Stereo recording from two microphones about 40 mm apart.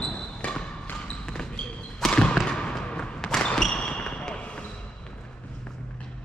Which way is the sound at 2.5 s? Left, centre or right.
Centre.